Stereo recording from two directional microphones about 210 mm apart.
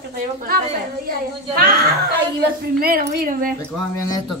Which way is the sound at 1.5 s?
45° right (ahead or behind).